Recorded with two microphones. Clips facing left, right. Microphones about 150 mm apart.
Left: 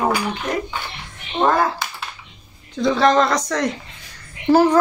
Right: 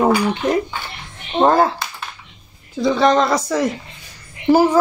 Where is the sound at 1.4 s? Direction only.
30° right (ahead or behind).